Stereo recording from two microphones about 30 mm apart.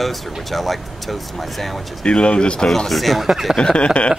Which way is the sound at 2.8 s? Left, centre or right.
Centre.